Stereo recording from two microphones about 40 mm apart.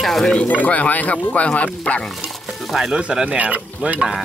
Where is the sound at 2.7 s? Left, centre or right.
Centre.